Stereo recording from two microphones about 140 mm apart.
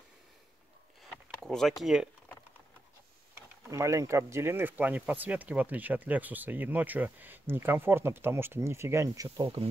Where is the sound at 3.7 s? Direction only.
20° right (ahead or behind).